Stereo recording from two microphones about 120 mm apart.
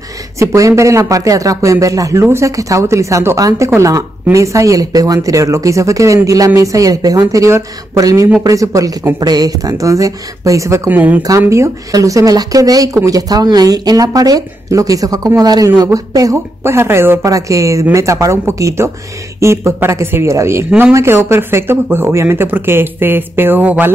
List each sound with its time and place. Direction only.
0.4 s speech: 25° right (ahead or behind)